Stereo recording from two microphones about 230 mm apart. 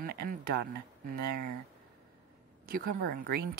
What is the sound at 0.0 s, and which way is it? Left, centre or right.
Speech, right.